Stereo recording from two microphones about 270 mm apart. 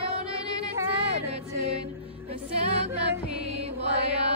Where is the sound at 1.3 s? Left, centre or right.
Right.